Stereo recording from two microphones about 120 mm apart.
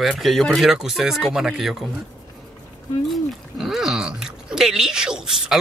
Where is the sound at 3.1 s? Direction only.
Centre (ahead or behind).